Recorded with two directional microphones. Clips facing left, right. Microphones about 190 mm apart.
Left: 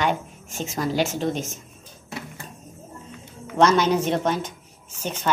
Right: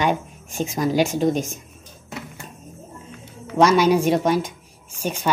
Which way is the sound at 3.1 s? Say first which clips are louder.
Right 3 dB; 10° right (ahead or behind).